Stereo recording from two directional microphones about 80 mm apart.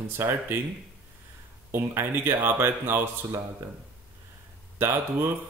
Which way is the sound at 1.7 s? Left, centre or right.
Right.